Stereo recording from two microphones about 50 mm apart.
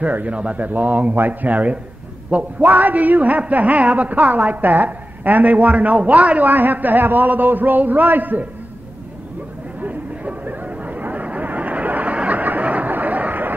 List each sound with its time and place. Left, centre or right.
0.0 s a woman's voice: right
9.8 s chatter: right